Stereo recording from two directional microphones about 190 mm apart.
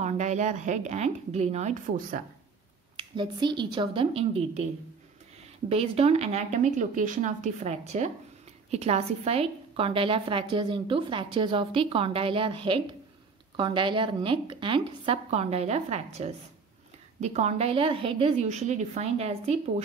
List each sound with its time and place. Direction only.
0.0 s speech: 40° right (ahead or behind)
3.0 s a woman's voice: 25° right (ahead or behind)
5.7 s a woman's voice: 30° right (ahead or behind)